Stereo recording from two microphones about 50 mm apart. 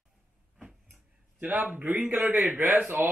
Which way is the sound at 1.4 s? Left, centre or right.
Right.